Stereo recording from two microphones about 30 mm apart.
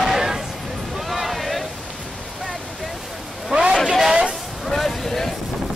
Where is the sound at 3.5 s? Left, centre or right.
Right.